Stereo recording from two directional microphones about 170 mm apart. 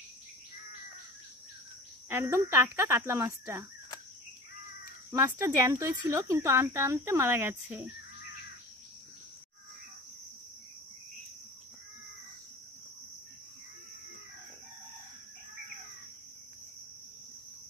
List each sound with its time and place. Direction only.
2.0 s speech: 15° right (ahead or behind)
5.1 s speech: 15° right (ahead or behind)